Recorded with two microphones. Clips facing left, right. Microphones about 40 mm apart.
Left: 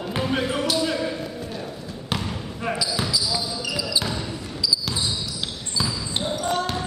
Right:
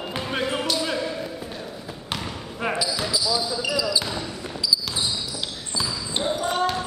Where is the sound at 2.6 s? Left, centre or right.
Right.